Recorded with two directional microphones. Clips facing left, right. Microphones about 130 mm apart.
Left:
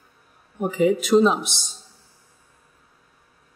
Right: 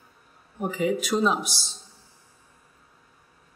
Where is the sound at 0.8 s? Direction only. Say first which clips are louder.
Left 7 dB; 25° left (ahead or behind).